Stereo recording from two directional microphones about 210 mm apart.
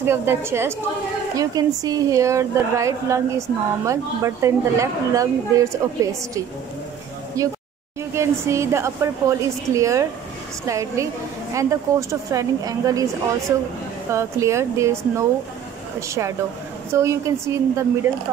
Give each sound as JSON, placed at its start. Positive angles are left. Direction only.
{"t": 0.0, "sound": "a woman's voice", "side_deg": -10}
{"t": 14.1, "sound": "a woman's voice", "side_deg": -15}